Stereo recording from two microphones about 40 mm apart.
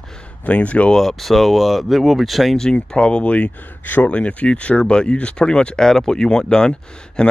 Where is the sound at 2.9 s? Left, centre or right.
Left.